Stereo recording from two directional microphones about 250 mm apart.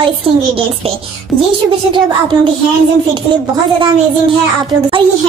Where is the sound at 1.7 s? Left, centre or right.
Centre.